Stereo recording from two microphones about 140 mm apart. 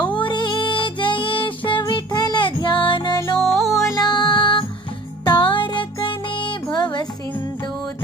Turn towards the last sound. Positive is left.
turn(degrees=30)  # may be behind; listen again after turning